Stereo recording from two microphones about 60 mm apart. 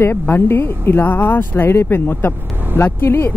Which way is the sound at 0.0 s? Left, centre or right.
Left.